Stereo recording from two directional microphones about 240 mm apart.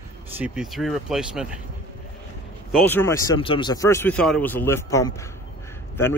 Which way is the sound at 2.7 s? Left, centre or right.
Centre.